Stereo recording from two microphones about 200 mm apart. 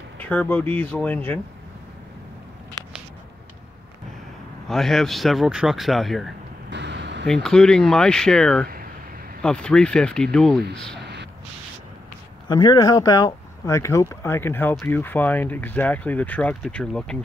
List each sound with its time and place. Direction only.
0.2 s speech: 5° left (ahead or behind)
4.6 s speech: centre (ahead or behind)
6.7 s a sound: 60° right (ahead or behind)
7.4 s speech: 5° left (ahead or behind)
12.4 s speech: 20° left (ahead or behind); by 17.2 s 5° left (ahead or behind)